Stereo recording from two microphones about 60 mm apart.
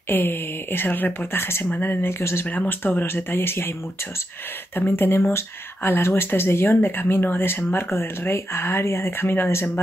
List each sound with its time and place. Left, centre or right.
0.1 s speech: left
2.4 s speech: left
4.7 s speech: left